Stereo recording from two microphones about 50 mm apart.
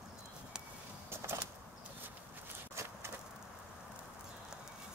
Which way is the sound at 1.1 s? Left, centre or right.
Right.